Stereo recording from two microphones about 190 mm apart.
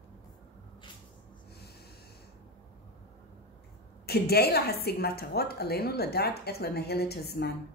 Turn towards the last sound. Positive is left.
turn(degrees=55)  # may be behind; listen again after turning